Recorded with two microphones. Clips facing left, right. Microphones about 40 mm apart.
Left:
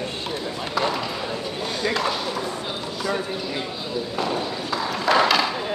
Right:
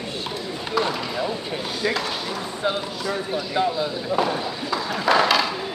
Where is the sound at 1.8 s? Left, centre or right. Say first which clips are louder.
Left 2 dB; centre.